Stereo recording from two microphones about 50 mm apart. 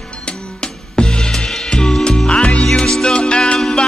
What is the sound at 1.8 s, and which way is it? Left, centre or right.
Music, centre.